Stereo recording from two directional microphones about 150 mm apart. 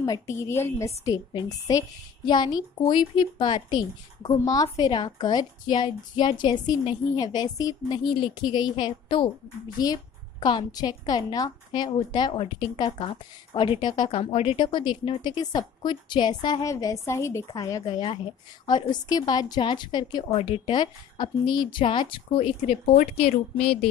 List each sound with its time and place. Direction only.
0.0 s a woman's voice: 20° left (ahead or behind); by 23.4 s 45° left (ahead or behind)